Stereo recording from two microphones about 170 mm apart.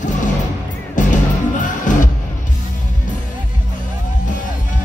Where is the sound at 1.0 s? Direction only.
50° left (ahead or behind).